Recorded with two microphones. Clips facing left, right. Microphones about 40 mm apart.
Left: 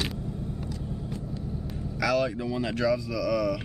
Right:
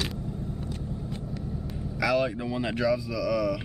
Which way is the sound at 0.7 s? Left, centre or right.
Right.